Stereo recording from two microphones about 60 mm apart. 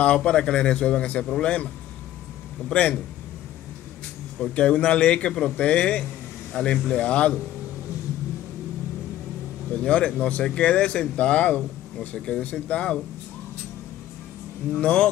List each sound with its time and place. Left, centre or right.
0.0 s speech: centre
2.7 s speech: left
4.4 s a man's voice: centre
9.7 s speech: centre
14.7 s speech: left